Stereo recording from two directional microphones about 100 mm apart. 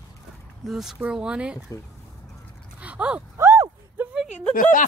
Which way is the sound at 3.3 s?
30° right (ahead or behind).